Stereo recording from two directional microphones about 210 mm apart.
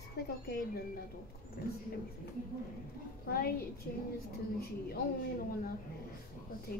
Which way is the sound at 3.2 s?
45° left (ahead or behind).